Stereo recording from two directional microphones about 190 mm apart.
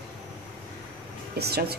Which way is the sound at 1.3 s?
55° right (ahead or behind).